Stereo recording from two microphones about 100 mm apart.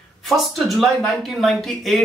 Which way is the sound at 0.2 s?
Centre (ahead or behind).